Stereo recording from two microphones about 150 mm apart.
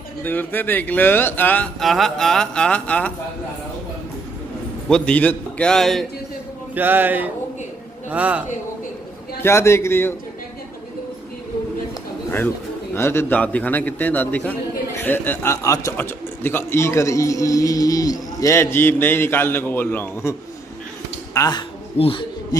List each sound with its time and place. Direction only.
0.2 s a man's voice: 10° left (ahead or behind)
4.8 s a man's voice: 5° left (ahead or behind)
6.7 s speech: 10° right (ahead or behind)
9.4 s a man's voice: 15° left (ahead or behind)
12.9 s a man's voice: 15° left (ahead or behind)
21.3 s a sound: 25° left (ahead or behind)